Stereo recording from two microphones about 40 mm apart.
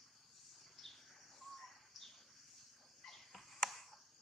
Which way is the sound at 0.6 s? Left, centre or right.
Centre.